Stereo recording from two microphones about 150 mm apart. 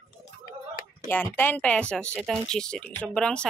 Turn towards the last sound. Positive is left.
turn(degrees=5)  # may be behind; listen again after turning